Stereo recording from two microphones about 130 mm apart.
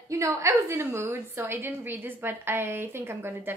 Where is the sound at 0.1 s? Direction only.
25° right (ahead or behind).